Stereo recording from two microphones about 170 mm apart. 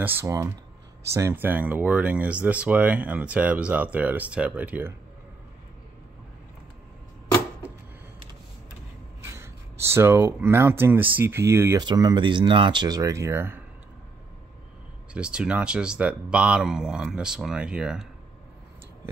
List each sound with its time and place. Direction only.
0.0 s speech: 15° right (ahead or behind)
9.2 s speech: 15° right (ahead or behind)
15.1 s speech: 5° right (ahead or behind)